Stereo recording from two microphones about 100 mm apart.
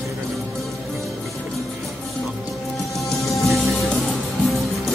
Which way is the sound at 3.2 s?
30° left (ahead or behind).